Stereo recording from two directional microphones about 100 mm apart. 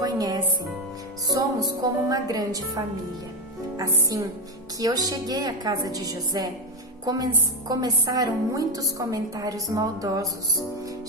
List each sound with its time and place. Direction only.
0.0 s music: 40° right (ahead or behind)
3.7 s a woman's voice: 40° right (ahead or behind)